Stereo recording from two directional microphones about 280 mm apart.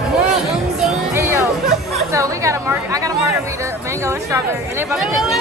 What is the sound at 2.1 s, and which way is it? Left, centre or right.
A woman's voice, centre.